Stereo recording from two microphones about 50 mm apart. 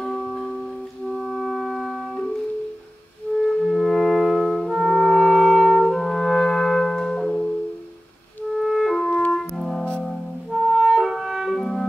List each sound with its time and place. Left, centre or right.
0.0 s music: centre
1.1 s music: centre
3.3 s music: left
3.6 s music: centre
5.9 s music: centre
8.5 s clarinet: centre
9.6 s music: centre
10.5 s music: centre